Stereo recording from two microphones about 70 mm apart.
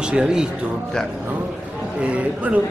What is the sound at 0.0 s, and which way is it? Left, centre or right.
Speech, centre.